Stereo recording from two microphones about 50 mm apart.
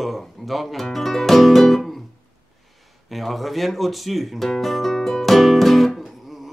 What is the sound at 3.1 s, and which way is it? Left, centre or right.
Guitar, centre.